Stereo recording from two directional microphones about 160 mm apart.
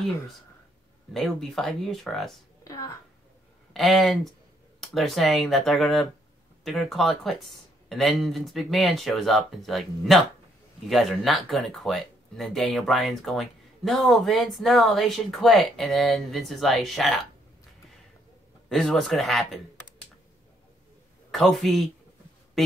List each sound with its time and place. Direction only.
1.1 s speech: centre (ahead or behind)
2.6 s a sound: 20° left (ahead or behind)
3.7 s speech: centre (ahead or behind)
18.7 s speech: centre (ahead or behind)
21.3 s speech: centre (ahead or behind)